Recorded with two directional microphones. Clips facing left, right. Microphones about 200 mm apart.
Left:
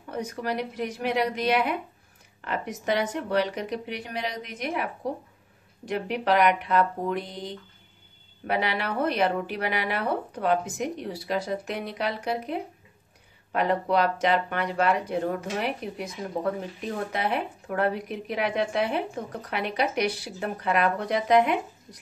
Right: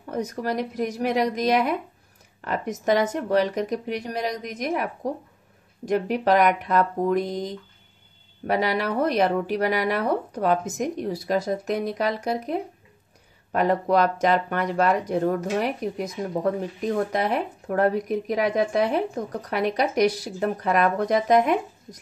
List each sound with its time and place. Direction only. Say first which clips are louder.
0.1 s a woman's voice: right 3 dB; 40° right (ahead or behind)
5.9 s a woman's voice: right 4 dB; 45° right (ahead or behind)
16.8 s a woman's voice: right 6 dB; 40° right (ahead or behind)